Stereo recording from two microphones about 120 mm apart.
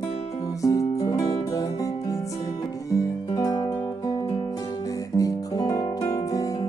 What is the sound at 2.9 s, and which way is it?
Guitar, 30° left (ahead or behind).